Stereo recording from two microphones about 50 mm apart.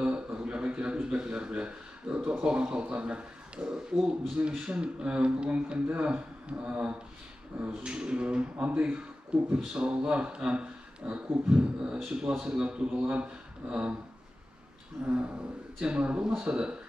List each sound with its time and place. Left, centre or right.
0.0 s a sound: right
0.9 s speech: centre
15.0 s speech: right